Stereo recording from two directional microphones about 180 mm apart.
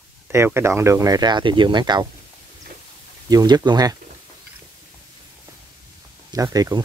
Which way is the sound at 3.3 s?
20° right (ahead or behind).